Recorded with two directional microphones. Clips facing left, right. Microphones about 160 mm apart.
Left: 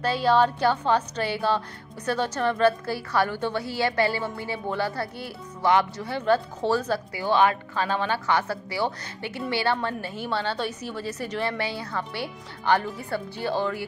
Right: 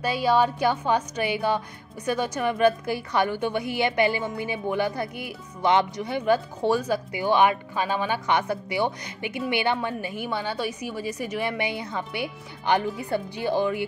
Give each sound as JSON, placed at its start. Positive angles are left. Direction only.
{"t": 0.0, "sound": "a woman's voice", "side_deg": -10}